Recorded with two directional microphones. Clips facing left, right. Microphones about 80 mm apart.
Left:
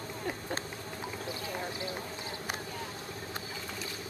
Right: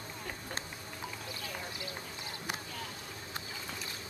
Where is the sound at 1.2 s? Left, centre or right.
Left.